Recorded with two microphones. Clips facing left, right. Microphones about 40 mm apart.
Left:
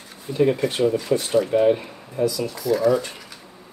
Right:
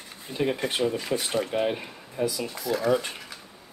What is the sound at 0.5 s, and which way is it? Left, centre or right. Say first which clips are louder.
Speech: left 6 dB; right.